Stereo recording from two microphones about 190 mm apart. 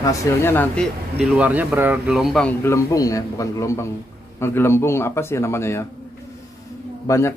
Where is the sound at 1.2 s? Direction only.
5° right (ahead or behind).